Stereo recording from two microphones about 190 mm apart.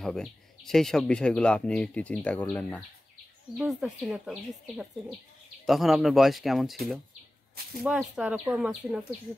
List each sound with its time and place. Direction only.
0.0 s speech: centre (ahead or behind)
7.8 s speech: 5° right (ahead or behind)